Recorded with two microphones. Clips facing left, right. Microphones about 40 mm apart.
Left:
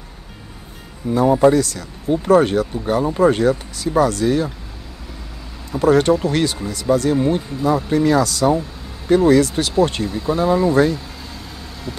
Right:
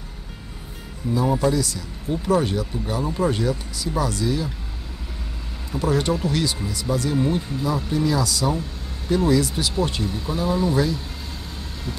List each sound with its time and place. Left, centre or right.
1.0 s speech: left
5.7 s speech: left
7.2 s speech: centre
7.6 s speech: left
10.0 s speech: centre
10.3 s speech: left
10.7 s speech: left